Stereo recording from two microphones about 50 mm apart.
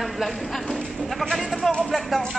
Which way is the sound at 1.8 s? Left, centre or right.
Centre.